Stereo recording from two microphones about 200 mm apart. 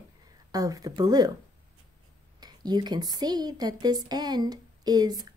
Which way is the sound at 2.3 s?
20° right (ahead or behind).